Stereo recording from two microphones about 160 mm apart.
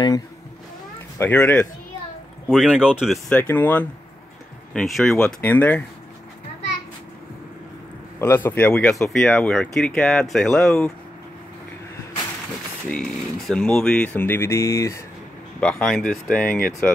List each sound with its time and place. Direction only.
1.1 s speech: 10° left (ahead or behind)
2.4 s speech: 5° right (ahead or behind)
3.3 s speech: 10° left (ahead or behind)
8.2 s speech: 15° left (ahead or behind)
12.9 s speech: 5° left (ahead or behind)
15.6 s speech: 5° left (ahead or behind)
16.4 s speech: 60° left (ahead or behind)